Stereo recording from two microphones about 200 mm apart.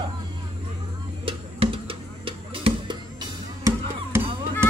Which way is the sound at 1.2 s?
25° right (ahead or behind).